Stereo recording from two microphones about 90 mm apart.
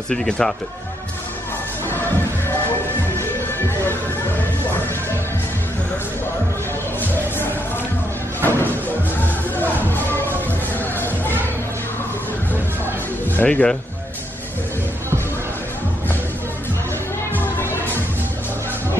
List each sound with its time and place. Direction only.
0.1 s speech: 5° left (ahead or behind)
3.2 s music: 25° left (ahead or behind)
8.5 s music: 25° left (ahead or behind)
13.4 s speech: 10° left (ahead or behind)